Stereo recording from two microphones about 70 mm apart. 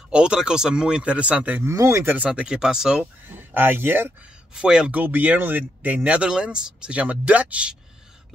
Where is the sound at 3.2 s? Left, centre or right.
Right.